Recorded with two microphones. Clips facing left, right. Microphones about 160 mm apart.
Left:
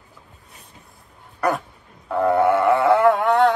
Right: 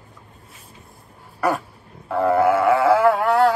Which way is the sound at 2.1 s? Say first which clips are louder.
Even; centre (ahead or behind).